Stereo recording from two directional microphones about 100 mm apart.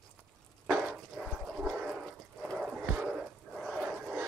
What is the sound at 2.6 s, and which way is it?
Dog, 10° right (ahead or behind).